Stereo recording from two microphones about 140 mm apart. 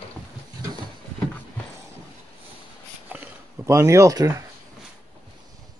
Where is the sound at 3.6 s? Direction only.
20° right (ahead or behind).